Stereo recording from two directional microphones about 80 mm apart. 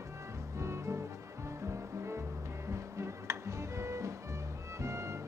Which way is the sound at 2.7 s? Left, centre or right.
Right.